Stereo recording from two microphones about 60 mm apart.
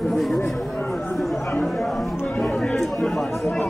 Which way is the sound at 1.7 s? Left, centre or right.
Centre.